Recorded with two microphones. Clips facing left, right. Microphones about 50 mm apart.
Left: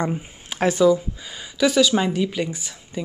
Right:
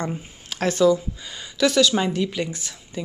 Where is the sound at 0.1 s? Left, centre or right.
Centre.